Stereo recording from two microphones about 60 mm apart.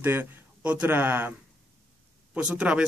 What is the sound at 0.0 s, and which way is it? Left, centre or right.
Speech, right.